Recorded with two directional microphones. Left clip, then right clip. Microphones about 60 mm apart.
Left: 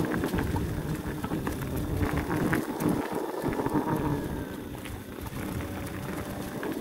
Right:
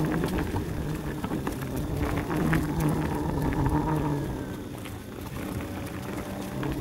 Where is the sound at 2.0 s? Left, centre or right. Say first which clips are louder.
Even; centre.